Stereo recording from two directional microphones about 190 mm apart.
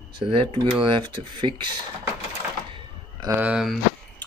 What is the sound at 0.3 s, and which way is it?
Speech, 25° right (ahead or behind).